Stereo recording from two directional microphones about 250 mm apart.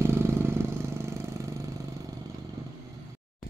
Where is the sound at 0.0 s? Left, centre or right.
Centre.